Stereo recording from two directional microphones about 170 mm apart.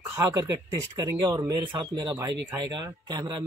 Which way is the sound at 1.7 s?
25° right (ahead or behind).